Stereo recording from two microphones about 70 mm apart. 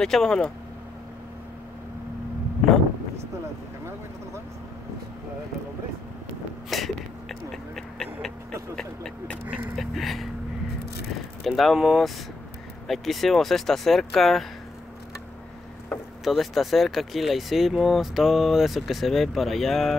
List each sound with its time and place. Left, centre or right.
0.0 s speech: centre
6.7 s speech: centre
9.8 s speech: centre
11.4 s speech: centre
16.3 s speech: centre